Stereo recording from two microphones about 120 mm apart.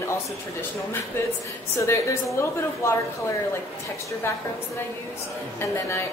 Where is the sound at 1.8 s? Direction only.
25° left (ahead or behind).